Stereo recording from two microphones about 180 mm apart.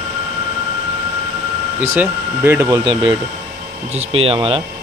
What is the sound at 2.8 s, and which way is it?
Speech, 25° right (ahead or behind).